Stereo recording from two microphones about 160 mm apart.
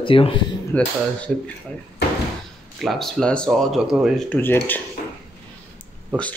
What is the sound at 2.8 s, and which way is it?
Speech, centre (ahead or behind).